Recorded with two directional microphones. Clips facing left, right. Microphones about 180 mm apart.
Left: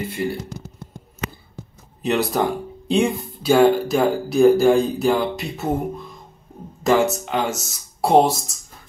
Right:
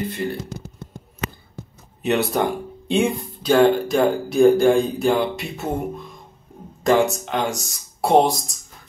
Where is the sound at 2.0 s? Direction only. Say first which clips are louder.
Even; centre (ahead or behind).